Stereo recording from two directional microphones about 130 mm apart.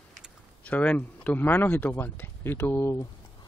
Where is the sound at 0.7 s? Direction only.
10° left (ahead or behind).